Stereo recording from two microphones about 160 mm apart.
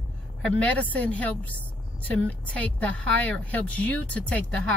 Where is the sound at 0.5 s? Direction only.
10° left (ahead or behind).